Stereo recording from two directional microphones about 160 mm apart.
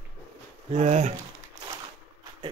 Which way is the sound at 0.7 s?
45° right (ahead or behind).